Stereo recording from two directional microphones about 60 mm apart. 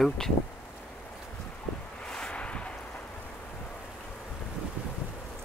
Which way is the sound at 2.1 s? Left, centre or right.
Centre.